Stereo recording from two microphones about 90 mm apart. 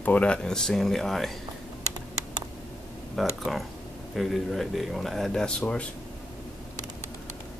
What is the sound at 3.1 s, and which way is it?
Speech, centre (ahead or behind).